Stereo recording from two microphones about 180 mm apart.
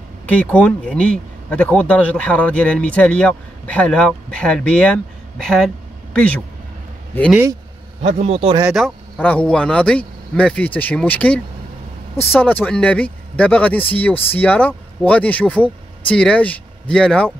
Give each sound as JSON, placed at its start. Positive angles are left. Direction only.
{"t": 0.3, "sound": "speech", "side_deg": 5}
{"t": 7.2, "sound": "speech", "side_deg": -10}
{"t": 8.0, "sound": "a man's voice", "side_deg": -35}
{"t": 8.6, "sound": "speech", "side_deg": 0}